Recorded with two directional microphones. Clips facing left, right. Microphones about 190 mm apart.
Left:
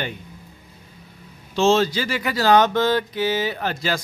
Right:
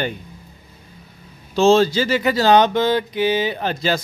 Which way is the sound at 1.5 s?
35° right (ahead or behind).